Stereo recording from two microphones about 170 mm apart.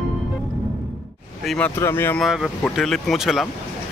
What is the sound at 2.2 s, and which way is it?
Speech, 5° right (ahead or behind).